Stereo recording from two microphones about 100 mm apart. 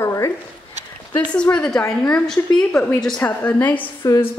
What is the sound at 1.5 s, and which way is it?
Speech, 10° left (ahead or behind).